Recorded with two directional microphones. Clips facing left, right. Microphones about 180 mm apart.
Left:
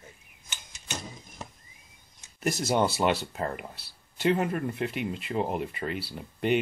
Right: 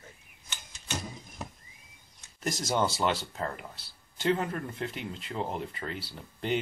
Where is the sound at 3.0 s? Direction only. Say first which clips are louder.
Left 3 dB; 10° left (ahead or behind).